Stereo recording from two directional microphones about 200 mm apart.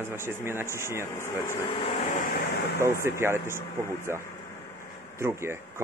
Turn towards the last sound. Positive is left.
turn(degrees=-15)  # may be behind; listen again after turning